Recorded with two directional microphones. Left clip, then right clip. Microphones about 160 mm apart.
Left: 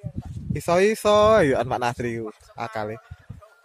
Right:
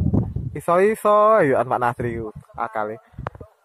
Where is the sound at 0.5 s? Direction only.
15° left (ahead or behind).